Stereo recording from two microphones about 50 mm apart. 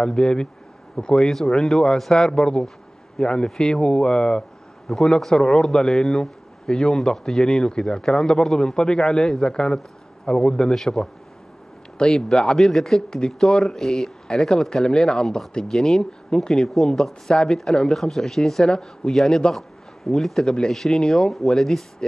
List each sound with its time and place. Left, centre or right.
0.0 s a man's voice: centre
12.0 s a man's voice: centre
20.7 s a man's voice: centre